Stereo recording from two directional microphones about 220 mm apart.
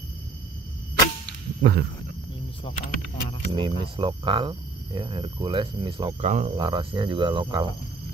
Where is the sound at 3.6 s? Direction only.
25° right (ahead or behind).